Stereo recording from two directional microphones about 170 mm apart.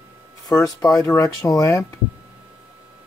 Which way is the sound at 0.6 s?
20° left (ahead or behind).